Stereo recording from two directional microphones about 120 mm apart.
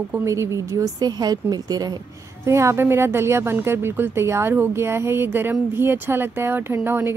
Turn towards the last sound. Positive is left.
turn(degrees=-20)  # may be behind; listen again after turning